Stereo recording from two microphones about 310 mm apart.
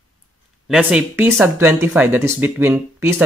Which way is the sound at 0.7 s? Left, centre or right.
Centre.